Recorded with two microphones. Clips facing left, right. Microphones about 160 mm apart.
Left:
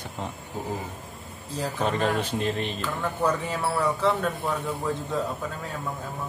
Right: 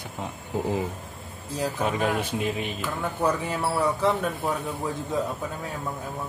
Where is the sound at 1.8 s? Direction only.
10° right (ahead or behind).